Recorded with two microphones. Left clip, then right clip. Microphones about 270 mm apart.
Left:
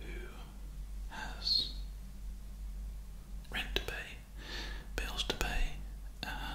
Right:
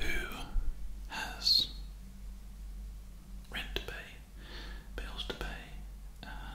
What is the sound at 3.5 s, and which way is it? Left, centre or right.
Whispering, centre.